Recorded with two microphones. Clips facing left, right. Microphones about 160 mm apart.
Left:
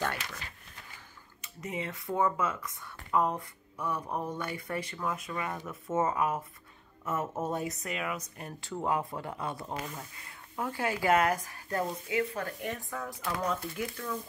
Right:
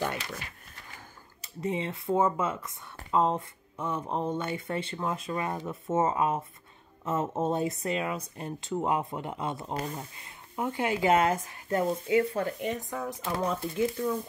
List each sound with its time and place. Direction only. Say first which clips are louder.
1.4 s speech: right 6 dB; 30° right (ahead or behind)
9.8 s speech: right 5 dB; 35° right (ahead or behind)
10.1 s speech: right 3 dB; 20° right (ahead or behind)